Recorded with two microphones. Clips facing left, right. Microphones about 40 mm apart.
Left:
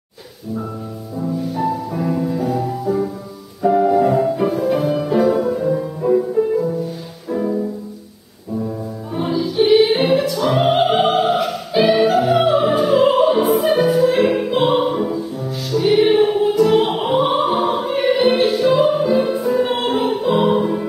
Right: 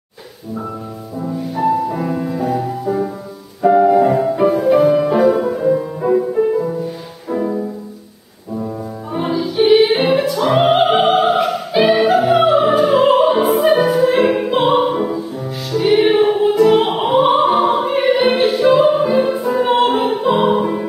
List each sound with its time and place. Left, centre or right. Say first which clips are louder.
1.2 s music: right 2 dB; centre
8.6 s music: right 1 dB; centre